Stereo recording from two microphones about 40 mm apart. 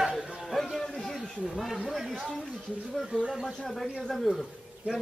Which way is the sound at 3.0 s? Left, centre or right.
Centre.